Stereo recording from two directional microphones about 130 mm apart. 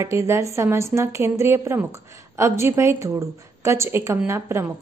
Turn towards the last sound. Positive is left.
turn(degrees=-20)  # may be behind; listen again after turning